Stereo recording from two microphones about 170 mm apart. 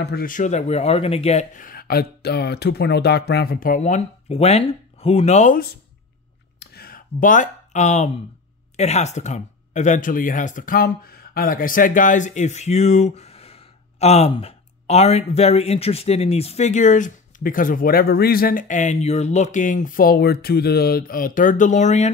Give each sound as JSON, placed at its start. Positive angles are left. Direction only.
{"t": 0.0, "sound": "speech", "side_deg": 65}
{"t": 6.6, "sound": "a sound", "side_deg": 65}
{"t": 8.7, "sound": "speech", "side_deg": 40}